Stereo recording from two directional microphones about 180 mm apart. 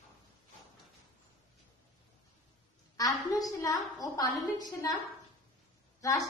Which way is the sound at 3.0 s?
20° left (ahead or behind).